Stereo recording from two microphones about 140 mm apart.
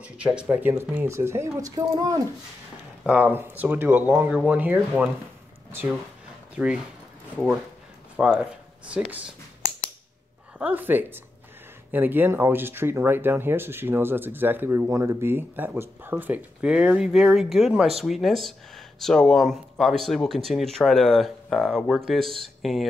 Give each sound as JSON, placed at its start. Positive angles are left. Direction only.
{"t": 0.0, "sound": "speech", "side_deg": -10}
{"t": 3.1, "sound": "speech", "side_deg": -10}
{"t": 8.2, "sound": "speech", "side_deg": -15}
{"t": 10.6, "sound": "speech", "side_deg": -15}